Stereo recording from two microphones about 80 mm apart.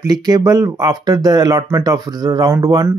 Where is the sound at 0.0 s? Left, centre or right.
Right.